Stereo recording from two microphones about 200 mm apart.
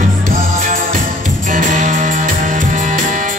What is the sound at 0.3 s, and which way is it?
Music, 45° right (ahead or behind).